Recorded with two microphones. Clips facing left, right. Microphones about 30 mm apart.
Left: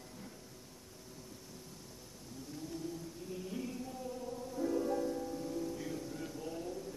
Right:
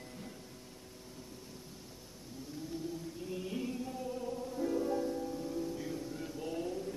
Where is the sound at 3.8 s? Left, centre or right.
Right.